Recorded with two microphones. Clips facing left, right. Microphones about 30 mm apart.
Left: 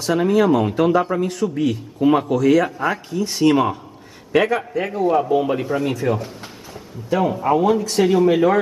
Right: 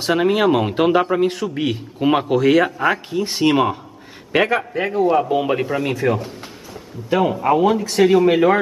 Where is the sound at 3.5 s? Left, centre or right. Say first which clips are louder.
Left 1 dB; right.